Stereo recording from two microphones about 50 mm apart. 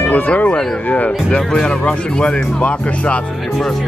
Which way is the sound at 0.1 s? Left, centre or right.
Left.